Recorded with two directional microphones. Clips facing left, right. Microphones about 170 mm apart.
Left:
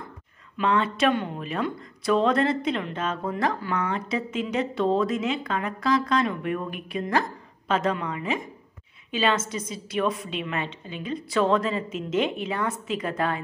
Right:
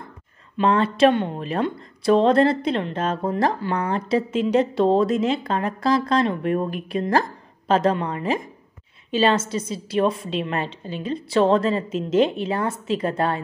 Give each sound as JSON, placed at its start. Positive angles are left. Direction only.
{"t": 0.6, "sound": "speech", "side_deg": -35}